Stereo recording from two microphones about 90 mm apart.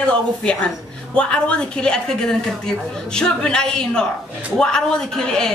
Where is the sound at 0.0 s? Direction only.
10° left (ahead or behind).